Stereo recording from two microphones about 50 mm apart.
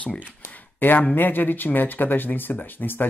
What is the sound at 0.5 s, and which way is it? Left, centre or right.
A man's voice, left.